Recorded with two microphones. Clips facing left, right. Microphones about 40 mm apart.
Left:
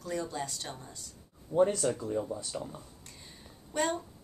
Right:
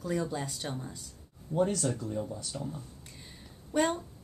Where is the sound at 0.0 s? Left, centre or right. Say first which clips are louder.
Right 2 dB; centre.